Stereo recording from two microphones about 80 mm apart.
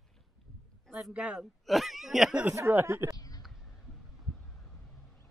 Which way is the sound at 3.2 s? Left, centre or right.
Left.